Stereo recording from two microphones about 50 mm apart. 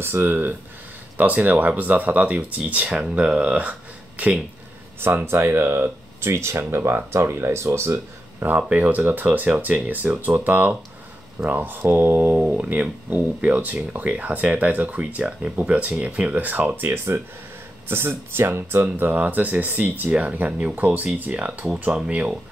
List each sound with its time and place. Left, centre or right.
0.0 s speech: right
3.0 s speech: right
5.0 s speech: right
8.4 s speech: right
11.8 s speech: right
12.4 s speech: right
16.8 s speech: right
19.0 s speech: right